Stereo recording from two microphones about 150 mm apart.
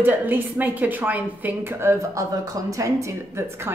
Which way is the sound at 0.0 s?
10° right (ahead or behind).